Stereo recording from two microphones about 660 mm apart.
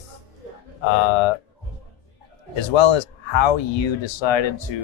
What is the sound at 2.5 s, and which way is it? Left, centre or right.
Speech, left.